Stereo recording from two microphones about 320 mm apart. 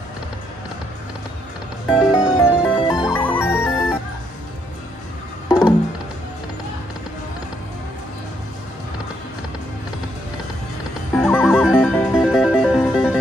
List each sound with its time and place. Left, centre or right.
1.9 s music: centre
5.5 s music: centre
11.1 s music: centre